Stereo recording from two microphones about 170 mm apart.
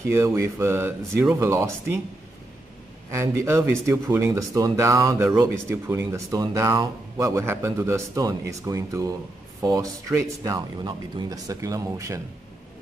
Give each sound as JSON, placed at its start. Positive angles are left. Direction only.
{"t": 0.0, "sound": "speech", "side_deg": -15}
{"t": 3.1, "sound": "speech", "side_deg": -15}